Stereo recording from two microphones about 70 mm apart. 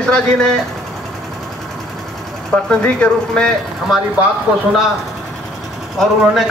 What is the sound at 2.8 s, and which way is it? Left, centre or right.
Speech, centre.